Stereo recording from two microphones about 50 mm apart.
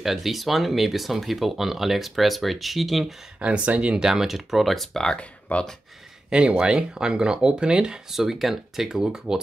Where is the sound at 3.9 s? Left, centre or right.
Centre.